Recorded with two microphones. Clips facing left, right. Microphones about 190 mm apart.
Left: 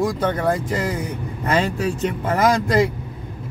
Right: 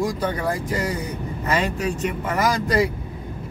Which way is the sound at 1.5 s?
30° left (ahead or behind).